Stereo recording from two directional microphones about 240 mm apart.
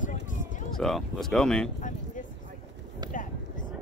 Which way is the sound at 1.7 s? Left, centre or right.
Left.